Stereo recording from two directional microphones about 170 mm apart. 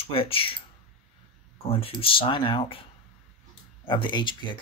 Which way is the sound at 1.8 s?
30° left (ahead or behind).